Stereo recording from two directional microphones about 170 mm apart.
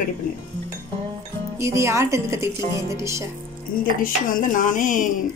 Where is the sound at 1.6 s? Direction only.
15° right (ahead or behind).